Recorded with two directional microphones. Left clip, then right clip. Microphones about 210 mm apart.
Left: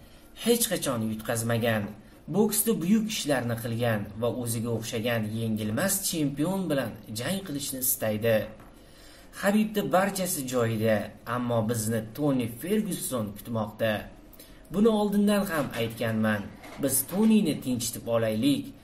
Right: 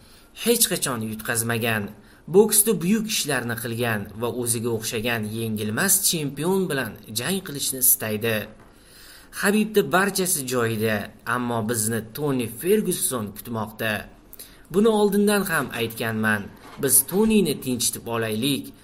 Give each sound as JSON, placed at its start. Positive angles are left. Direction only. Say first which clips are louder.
{"t": 0.4, "sound": "speech", "louder": "right 4 dB", "side_deg": -45}